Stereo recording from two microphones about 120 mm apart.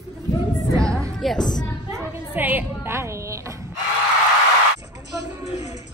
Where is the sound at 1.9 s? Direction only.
20° right (ahead or behind).